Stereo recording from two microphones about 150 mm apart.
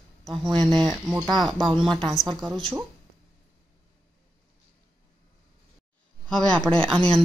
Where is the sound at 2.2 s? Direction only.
55° left (ahead or behind).